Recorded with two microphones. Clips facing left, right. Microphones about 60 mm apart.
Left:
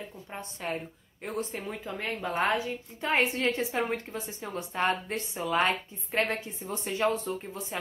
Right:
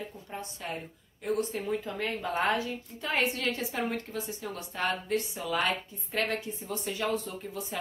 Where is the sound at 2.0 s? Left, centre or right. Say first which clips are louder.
Left 2 dB; centre.